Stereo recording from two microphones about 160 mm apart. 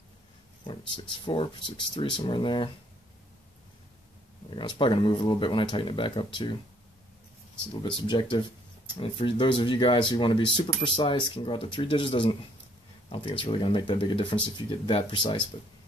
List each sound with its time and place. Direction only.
0.7 s speech: 30° left (ahead or behind)
4.5 s speech: 30° left (ahead or behind)
7.8 s speech: 30° left (ahead or behind)